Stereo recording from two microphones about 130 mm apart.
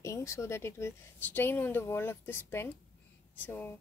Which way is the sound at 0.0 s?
25° left (ahead or behind).